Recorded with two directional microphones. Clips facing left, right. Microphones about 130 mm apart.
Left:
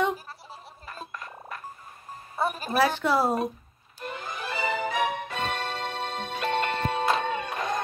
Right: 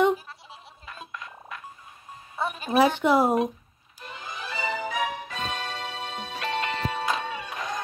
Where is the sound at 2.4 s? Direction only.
5° left (ahead or behind).